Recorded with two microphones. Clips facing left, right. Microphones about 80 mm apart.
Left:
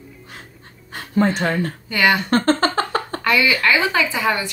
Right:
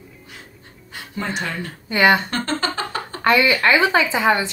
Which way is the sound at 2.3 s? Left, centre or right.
Left.